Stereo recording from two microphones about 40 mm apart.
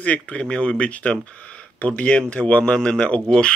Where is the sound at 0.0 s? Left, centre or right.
Left.